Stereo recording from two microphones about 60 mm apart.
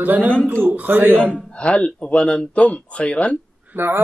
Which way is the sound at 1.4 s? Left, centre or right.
Centre.